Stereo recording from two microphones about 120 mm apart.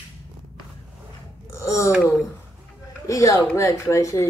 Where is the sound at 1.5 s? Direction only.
25° left (ahead or behind).